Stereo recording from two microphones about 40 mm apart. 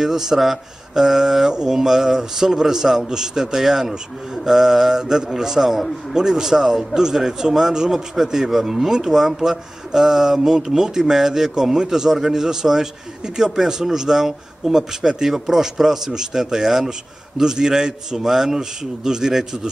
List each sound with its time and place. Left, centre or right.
0.0 s a man's voice: centre
1.5 s mantra: centre
1.8 s a man's voice: centre